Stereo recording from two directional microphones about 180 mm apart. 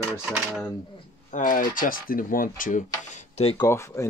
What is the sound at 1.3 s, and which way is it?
Speech, 45° left (ahead or behind).